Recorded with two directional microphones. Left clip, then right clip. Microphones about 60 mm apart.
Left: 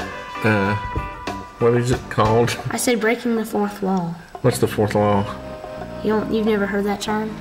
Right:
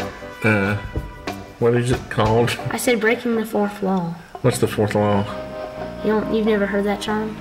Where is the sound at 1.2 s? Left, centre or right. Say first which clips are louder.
Even; centre.